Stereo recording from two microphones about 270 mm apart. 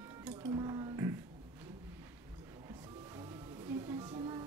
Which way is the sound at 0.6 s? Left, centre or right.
Centre.